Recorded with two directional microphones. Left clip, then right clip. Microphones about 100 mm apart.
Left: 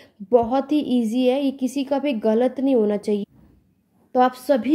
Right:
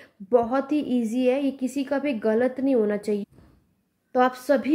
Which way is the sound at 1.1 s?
40° left (ahead or behind).